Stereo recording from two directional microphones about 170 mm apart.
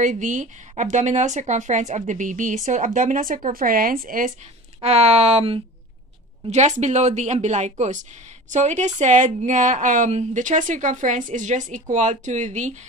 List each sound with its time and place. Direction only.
0.0 s speech: 50° right (ahead or behind)
4.8 s speech: 40° right (ahead or behind)